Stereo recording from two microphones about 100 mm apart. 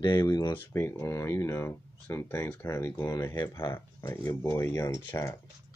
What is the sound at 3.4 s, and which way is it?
Speech, 50° left (ahead or behind).